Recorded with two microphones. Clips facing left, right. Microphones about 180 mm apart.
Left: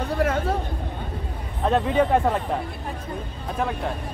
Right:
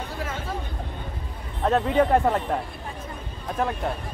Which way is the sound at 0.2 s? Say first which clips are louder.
Left 11 dB; 65° left (ahead or behind).